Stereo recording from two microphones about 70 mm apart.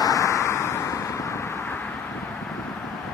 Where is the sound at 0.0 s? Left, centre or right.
Left.